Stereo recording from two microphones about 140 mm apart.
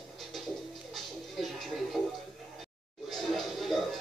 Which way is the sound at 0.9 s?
Centre (ahead or behind).